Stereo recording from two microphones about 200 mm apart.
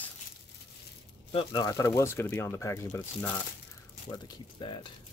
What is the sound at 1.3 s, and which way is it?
Speech, 25° left (ahead or behind).